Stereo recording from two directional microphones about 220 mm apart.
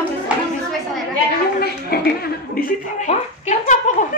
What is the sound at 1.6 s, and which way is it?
A woman's voice, 45° left (ahead or behind).